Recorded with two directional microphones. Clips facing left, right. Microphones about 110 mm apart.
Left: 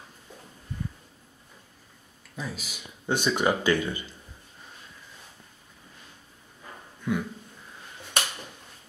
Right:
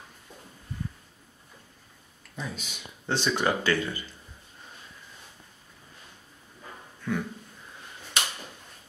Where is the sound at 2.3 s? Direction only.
5° left (ahead or behind).